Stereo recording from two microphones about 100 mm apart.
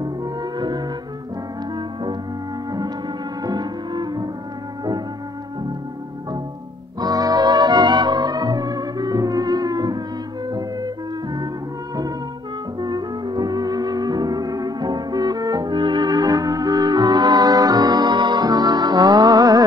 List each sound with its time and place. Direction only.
0.0 s music: 40° right (ahead or behind)
3.4 s music: 45° right (ahead or behind)
7.0 s music: 40° right (ahead or behind)
12.8 s music: 45° right (ahead or behind)